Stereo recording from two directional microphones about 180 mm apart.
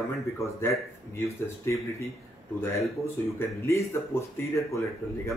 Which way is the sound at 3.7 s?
15° left (ahead or behind).